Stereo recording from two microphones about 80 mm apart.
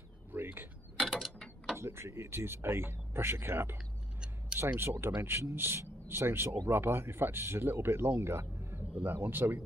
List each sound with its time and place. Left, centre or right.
0.3 s mechanisms: right
1.0 s mechanisms: centre
1.8 s speech: right
3.7 s a sound: centre
4.6 s speech: right